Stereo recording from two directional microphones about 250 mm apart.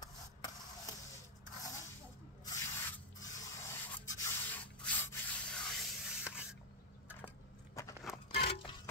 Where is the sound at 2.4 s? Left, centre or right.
Centre.